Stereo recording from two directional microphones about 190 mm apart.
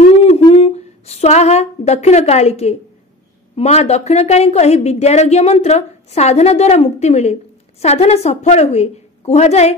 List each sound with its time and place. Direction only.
0.0 s humming: 35° left (ahead or behind)
3.5 s a woman's voice: 35° left (ahead or behind)